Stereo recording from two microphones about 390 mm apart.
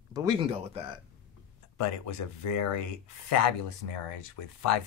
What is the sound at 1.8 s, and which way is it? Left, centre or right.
Speech, left.